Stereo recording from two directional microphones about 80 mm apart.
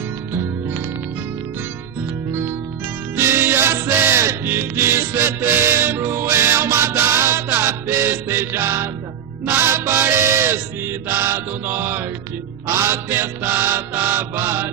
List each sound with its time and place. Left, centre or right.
3.2 s music: right
9.5 s chant: right
12.6 s mantra: right